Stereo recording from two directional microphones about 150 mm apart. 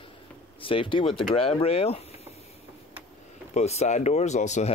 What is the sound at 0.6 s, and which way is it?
Speech, 35° left (ahead or behind).